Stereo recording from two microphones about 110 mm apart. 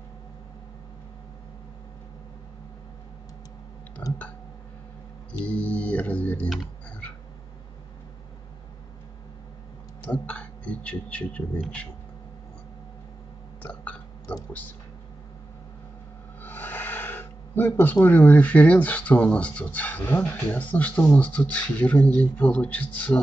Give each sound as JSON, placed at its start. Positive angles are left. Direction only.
{"t": 5.4, "sound": "music", "side_deg": 10}
{"t": 10.0, "sound": "speech", "side_deg": 10}
{"t": 13.6, "sound": "burping", "side_deg": 10}
{"t": 16.3, "sound": "speech", "side_deg": 15}